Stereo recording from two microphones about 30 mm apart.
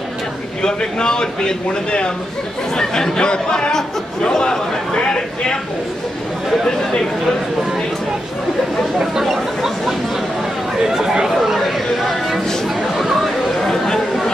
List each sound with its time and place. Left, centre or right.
0.6 s speech: left
1.7 s a man's voice: left
2.7 s speech: centre
6.6 s speech: centre
10.9 s speech: centre
11.2 s a sound: centre
12.6 s chatter: centre
13.6 s chatter: centre